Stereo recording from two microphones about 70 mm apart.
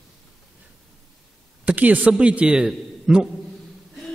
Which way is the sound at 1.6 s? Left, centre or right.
Right.